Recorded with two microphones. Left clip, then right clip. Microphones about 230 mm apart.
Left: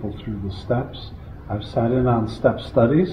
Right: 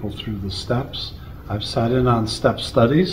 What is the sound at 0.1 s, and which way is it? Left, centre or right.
A man's voice, centre.